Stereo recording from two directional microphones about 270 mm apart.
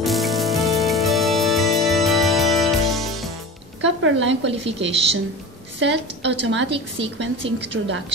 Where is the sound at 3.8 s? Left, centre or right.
Right.